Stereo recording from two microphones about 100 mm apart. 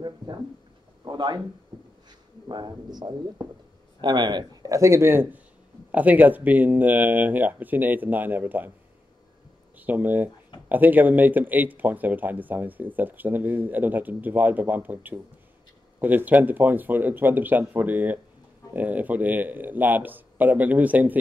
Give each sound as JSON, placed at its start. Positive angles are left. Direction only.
{"t": 1.0, "sound": "a sound", "side_deg": -45}
{"t": 4.0, "sound": "speech", "side_deg": -45}
{"t": 4.6, "sound": "speech", "side_deg": -30}
{"t": 9.8, "sound": "speech", "side_deg": -15}